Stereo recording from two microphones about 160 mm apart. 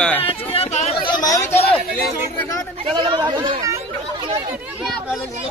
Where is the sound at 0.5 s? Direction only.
40° left (ahead or behind); by 1.6 s 20° left (ahead or behind).